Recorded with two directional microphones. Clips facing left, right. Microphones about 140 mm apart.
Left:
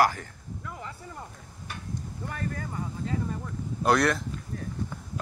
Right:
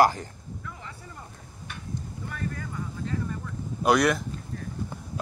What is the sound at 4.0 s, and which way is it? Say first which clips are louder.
Speech: right 2 dB; centre (ahead or behind).